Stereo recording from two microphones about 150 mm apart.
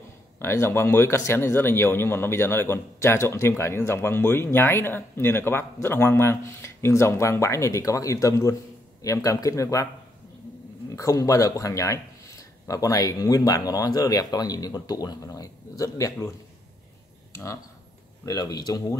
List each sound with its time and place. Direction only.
0.4 s speech: 15° left (ahead or behind)
10.9 s speech: 20° left (ahead or behind)
18.2 s speech: 25° left (ahead or behind)